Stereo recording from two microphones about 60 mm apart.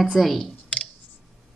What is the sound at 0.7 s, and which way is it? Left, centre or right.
Clicking, centre.